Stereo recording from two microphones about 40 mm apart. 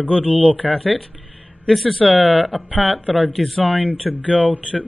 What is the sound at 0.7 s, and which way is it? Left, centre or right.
Speech, centre.